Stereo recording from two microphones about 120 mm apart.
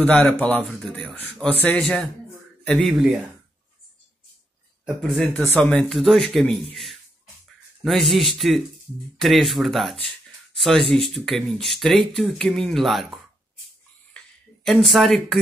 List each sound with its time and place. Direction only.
0.0 s speech: 10° left (ahead or behind)
4.8 s speech: 5° left (ahead or behind)
14.1 s a sound: 5° left (ahead or behind)